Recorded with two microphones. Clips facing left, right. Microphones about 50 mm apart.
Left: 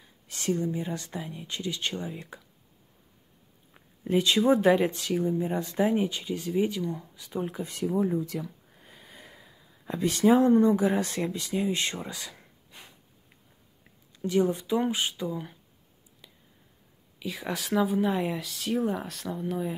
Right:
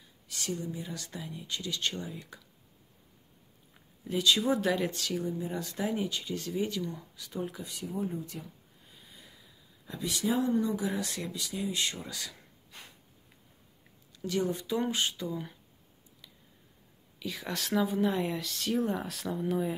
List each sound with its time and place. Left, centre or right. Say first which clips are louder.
0.3 s speech: left 7 dB; left
4.2 s speech: left 5 dB; left
7.8 s speech: left 9 dB; left
12.7 s sniff: even; centre
14.1 s a sound: left 6 dB; left
14.4 s speech: left 4 dB; centre
16.2 s a sound: left 2 dB; centre
17.2 s speech: left 3 dB; centre